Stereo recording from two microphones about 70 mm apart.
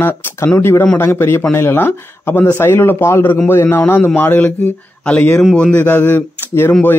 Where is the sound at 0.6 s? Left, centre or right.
Left.